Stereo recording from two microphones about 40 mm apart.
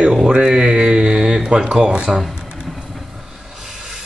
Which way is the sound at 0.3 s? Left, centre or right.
Right.